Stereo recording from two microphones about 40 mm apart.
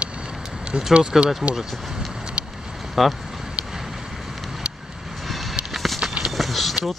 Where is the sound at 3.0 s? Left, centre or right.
Centre.